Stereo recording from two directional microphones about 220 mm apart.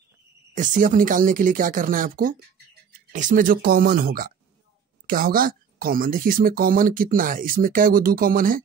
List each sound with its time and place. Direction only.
0.6 s speech: 35° right (ahead or behind)